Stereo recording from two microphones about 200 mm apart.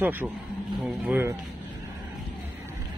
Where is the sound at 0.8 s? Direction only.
5° right (ahead or behind).